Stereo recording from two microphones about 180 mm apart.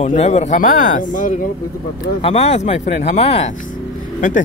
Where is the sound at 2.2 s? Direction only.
35° left (ahead or behind).